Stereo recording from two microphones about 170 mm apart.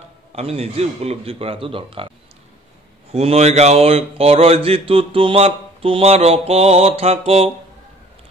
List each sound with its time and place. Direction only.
0.4 s speech: 35° right (ahead or behind)
3.1 s speech: 35° right (ahead or behind)